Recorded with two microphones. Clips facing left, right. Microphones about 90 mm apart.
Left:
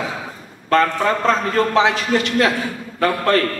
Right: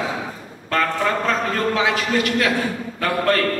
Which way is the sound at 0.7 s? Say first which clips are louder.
Left 4 dB; 30° left (ahead or behind).